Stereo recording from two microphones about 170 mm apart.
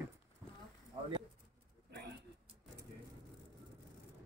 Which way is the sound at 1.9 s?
75° right (ahead or behind).